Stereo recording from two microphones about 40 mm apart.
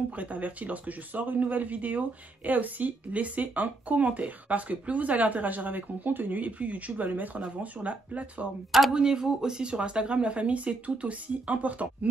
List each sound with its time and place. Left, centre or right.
0.1 s speech: right
8.9 s speech: centre; by 12.1 s right